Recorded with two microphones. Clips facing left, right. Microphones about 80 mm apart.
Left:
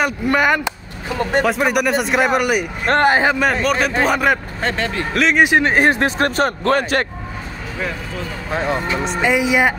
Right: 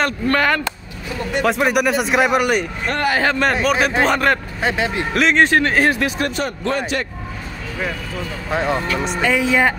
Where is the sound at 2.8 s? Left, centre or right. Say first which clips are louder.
Left 6 dB; left.